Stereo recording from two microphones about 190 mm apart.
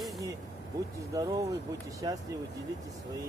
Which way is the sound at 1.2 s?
20° right (ahead or behind).